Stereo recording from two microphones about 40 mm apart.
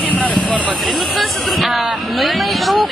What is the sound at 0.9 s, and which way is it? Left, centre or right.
Speech, centre.